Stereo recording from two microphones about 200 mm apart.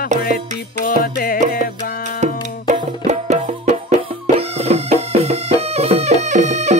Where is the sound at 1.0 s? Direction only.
45° left (ahead or behind).